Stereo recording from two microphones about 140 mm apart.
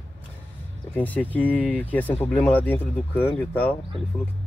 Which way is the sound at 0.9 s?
10° left (ahead or behind).